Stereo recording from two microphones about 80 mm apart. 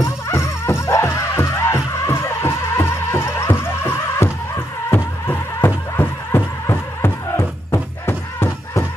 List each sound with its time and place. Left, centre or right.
0.0 s music: left